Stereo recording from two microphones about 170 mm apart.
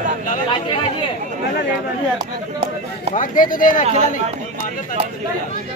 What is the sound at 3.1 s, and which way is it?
Speech, 50° left (ahead or behind).